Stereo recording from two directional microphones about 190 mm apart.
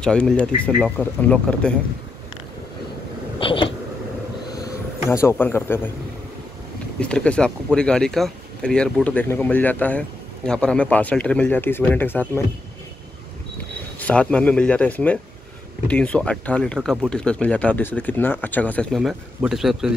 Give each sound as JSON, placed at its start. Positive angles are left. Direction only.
{"t": 0.0, "sound": "speech", "side_deg": 5}
{"t": 3.3, "sound": "a sound", "side_deg": 25}
{"t": 5.1, "sound": "speech", "side_deg": 10}
{"t": 7.0, "sound": "speech", "side_deg": 5}
{"t": 13.9, "sound": "speech", "side_deg": 5}